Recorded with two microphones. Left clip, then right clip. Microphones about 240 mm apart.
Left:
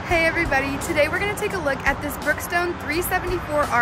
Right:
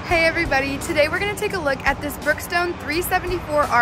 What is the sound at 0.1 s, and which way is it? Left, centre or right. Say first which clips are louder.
Speech: right 2 dB; centre.